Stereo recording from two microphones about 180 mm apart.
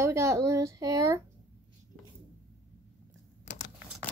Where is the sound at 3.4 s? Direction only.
45° left (ahead or behind).